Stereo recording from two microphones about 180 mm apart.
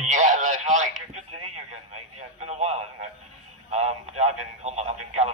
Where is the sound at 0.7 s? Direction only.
40° right (ahead or behind).